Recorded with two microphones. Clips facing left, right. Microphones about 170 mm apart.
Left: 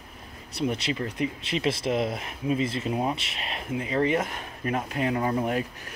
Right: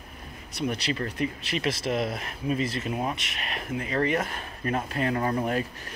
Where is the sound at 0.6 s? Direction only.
25° left (ahead or behind).